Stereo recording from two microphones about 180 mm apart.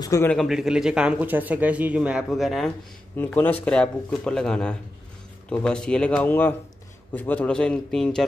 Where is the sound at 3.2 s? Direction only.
10° left (ahead or behind).